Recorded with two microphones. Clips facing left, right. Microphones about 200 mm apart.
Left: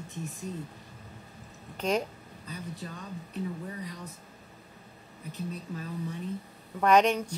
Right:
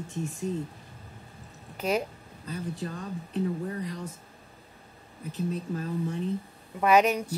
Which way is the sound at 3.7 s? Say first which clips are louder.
Right 5 dB; 45° right (ahead or behind).